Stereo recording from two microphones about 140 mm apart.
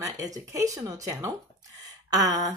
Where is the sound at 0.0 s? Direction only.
25° right (ahead or behind).